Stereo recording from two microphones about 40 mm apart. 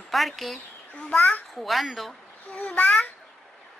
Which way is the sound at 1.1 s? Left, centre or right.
Left.